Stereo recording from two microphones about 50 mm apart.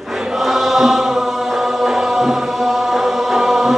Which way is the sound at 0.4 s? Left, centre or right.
Centre.